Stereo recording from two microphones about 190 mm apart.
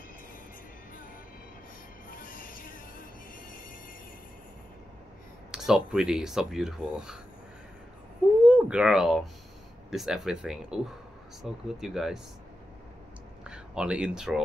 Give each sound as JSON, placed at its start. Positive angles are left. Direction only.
{"t": 2.0, "sound": "music", "side_deg": 45}
{"t": 5.5, "sound": "speech", "side_deg": 0}
{"t": 8.5, "sound": "speech", "side_deg": -5}
{"t": 13.4, "sound": "speech", "side_deg": -5}